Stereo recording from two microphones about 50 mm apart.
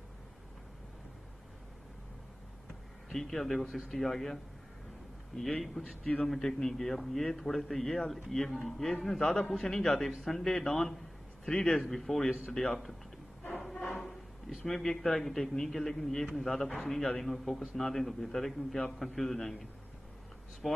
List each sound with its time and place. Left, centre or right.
3.1 s a man's voice: centre
5.6 s a man's voice: centre
13.9 s a man's voice: centre